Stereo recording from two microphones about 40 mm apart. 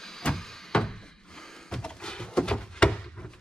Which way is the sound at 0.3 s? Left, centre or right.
Centre.